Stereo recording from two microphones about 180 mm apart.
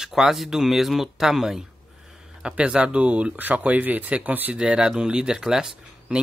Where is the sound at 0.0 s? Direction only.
Centre (ahead or behind).